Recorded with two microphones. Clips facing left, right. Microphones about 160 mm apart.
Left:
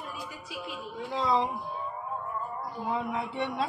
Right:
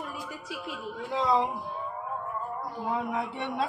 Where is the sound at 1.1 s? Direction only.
5° right (ahead or behind).